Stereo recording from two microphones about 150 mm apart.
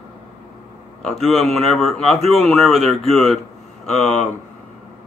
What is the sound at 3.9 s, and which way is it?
Speech, 50° left (ahead or behind).